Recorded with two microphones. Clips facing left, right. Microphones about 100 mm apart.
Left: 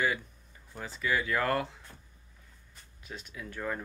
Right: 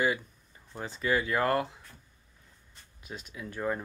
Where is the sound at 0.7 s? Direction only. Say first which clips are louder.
Right 2 dB; 25° right (ahead or behind).